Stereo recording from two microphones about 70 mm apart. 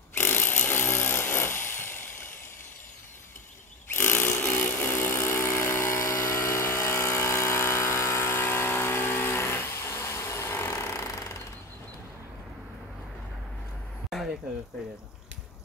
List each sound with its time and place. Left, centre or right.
0.1 s chainsaw: left
3.9 s power tool: left